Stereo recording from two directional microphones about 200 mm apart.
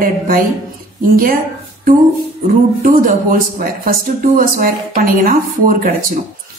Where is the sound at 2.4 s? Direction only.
40° right (ahead or behind).